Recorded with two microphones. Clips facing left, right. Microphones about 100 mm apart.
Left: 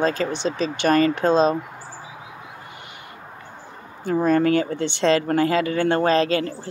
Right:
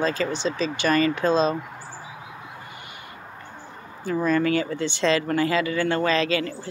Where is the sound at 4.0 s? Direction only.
45° left (ahead or behind).